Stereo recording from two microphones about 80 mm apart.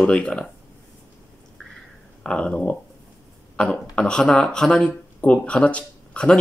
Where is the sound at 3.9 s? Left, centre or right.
Centre.